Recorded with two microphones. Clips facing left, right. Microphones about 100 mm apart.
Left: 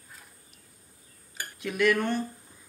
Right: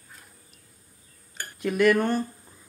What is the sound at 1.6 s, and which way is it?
Speech, 45° right (ahead or behind).